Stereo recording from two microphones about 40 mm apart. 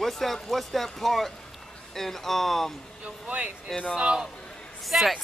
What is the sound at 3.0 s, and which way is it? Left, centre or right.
Speech, right.